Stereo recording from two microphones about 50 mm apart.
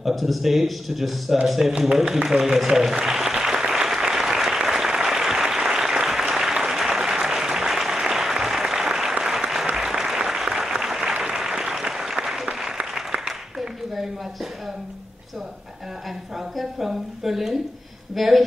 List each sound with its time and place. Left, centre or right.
0.0 s speech: centre
1.8 s applause: centre
16.5 s a sound: centre